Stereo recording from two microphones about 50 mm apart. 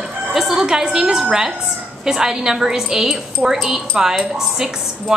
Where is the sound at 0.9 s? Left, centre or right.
Centre.